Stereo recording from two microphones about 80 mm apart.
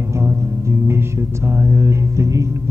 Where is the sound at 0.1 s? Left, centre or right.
Right.